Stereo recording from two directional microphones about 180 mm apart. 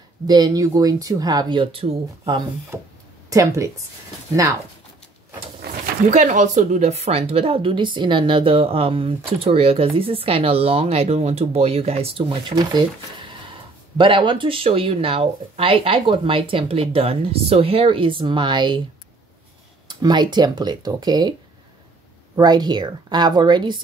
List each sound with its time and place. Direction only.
0.3 s speech: 20° right (ahead or behind)
2.7 s speech: 15° right (ahead or behind)
5.6 s a sound: 60° right (ahead or behind)
6.0 s speech: 45° right (ahead or behind); by 12.8 s 25° right (ahead or behind)
13.9 s speech: 25° right (ahead or behind)
19.9 s speech: 25° right (ahead or behind)